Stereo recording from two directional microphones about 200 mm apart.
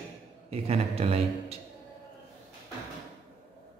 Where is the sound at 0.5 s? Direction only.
30° right (ahead or behind).